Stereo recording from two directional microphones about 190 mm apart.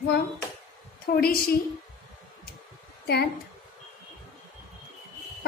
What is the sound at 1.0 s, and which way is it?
Speech, 55° left (ahead or behind).